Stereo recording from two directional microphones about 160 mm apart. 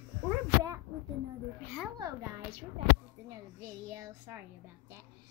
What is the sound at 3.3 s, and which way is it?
A child's voice, 15° right (ahead or behind).